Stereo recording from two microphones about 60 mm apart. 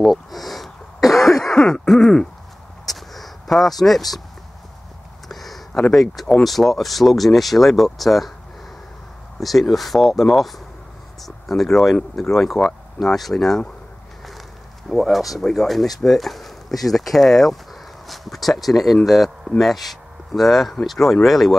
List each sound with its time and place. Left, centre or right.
0.0 s throat clearing: centre
2.9 s a sound: centre
3.8 s speech: centre
5.3 s a sound: centre
5.9 s speech: centre
9.4 s speech: centre
14.9 s speech: centre